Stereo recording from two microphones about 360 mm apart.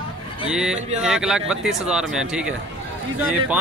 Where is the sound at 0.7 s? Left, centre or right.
Centre.